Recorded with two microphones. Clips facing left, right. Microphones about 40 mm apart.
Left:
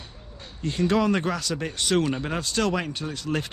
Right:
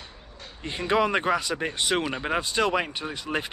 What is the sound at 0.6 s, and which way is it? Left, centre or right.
Speech, right.